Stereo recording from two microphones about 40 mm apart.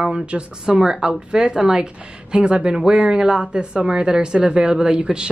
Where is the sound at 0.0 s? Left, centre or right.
Right.